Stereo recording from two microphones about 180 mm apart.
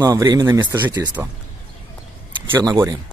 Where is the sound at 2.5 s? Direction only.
20° right (ahead or behind).